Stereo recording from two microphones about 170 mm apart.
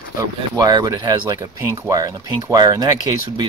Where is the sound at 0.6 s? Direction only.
20° right (ahead or behind).